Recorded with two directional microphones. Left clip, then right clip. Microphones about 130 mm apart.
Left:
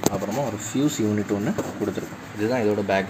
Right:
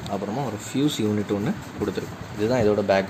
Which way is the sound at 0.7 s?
25° right (ahead or behind).